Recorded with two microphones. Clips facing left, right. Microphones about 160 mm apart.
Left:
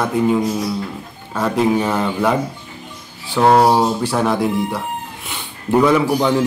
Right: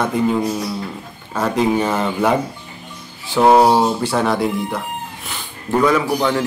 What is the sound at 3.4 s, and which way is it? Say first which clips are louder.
A man's voice: right 1 dB; 5° right (ahead or behind).